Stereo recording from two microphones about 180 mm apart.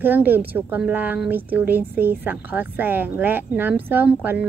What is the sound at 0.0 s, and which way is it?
Speech, 10° right (ahead or behind).